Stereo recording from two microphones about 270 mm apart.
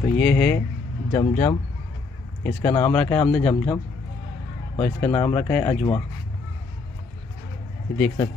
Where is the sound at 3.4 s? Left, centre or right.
Centre.